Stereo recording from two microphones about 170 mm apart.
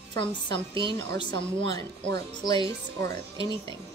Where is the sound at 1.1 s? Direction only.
25° left (ahead or behind).